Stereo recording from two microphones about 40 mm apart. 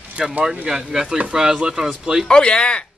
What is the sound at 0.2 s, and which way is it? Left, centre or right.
Speech, right.